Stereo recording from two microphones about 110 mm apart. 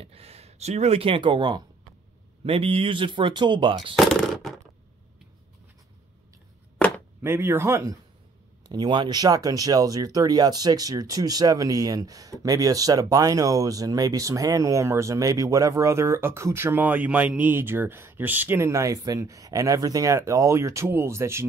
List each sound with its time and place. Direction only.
0.0 s speech: 65° right (ahead or behind); by 1.6 s 45° right (ahead or behind)
2.4 s speech: 60° right (ahead or behind)
3.9 s a sound: centre (ahead or behind)
6.8 s chop: 15° left (ahead or behind)
7.2 s a man's voice: 20° right (ahead or behind)
8.6 s speech: 40° right (ahead or behind); by 21.5 s 25° right (ahead or behind)